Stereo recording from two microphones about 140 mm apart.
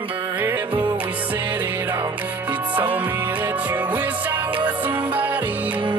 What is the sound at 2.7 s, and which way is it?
Music, 10° right (ahead or behind).